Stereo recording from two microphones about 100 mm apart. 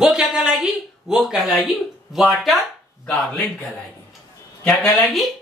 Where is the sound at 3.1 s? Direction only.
15° left (ahead or behind).